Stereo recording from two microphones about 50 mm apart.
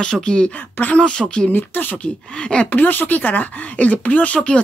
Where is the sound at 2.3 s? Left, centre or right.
Centre.